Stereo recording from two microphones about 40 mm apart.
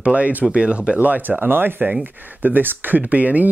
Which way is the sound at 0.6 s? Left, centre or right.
Right.